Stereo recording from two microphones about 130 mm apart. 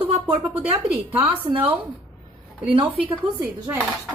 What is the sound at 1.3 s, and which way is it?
Speech, 45° right (ahead or behind).